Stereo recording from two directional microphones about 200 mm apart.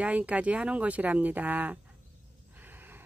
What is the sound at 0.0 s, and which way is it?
Speech, 5° right (ahead or behind).